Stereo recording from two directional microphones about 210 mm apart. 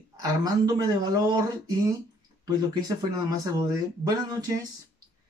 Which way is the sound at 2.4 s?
20° right (ahead or behind).